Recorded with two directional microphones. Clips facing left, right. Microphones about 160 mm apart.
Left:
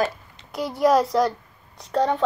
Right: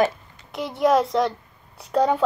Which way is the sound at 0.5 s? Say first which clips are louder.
Even; centre (ahead or behind).